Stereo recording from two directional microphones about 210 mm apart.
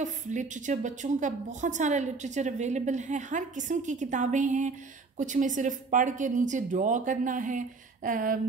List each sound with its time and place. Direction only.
0.0 s a woman's voice: 35° right (ahead or behind)